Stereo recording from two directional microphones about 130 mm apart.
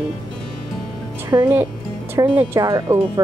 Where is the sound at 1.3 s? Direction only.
25° right (ahead or behind).